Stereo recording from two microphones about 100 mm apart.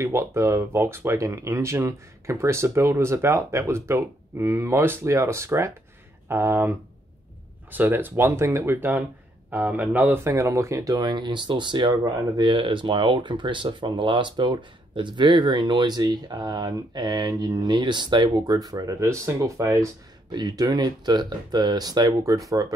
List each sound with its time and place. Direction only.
0.0 s speech: 30° right (ahead or behind)
7.7 s speech: 20° right (ahead or behind); by 12.4 s 45° right (ahead or behind)
12.4 s speech: 55° right (ahead or behind); by 19.9 s 30° right (ahead or behind)
20.2 s speech: 40° right (ahead or behind)